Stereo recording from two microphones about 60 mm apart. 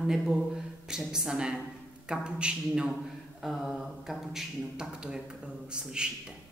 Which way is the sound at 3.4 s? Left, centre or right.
Centre.